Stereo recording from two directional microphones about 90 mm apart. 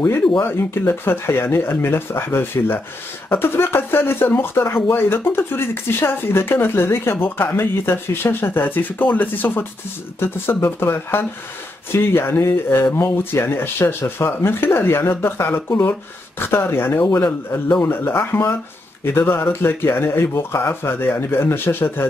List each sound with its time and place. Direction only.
0.4 s speech: 25° left (ahead or behind)
17.2 s a man's voice: 15° left (ahead or behind)